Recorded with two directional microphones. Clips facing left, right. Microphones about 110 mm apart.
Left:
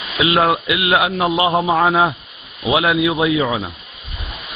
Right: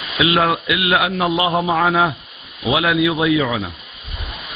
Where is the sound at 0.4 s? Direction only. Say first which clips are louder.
Left 1 dB; 20° left (ahead or behind).